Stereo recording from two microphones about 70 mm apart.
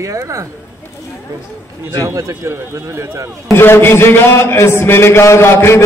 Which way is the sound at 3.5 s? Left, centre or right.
Left.